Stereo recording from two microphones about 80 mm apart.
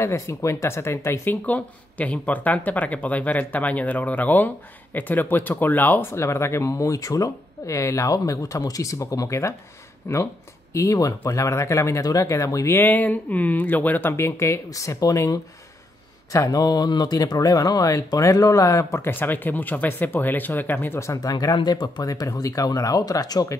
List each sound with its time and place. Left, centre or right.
0.0 s speech: left
12.7 s speech: left
14.1 s speech: left
21.0 s speech: left
21.6 s speech: left
22.0 s speech: left